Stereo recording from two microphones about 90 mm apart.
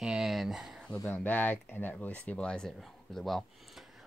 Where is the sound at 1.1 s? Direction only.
20° left (ahead or behind); by 3.9 s centre (ahead or behind).